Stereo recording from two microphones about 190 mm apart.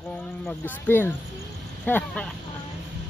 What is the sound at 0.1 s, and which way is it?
Speech, 5° left (ahead or behind).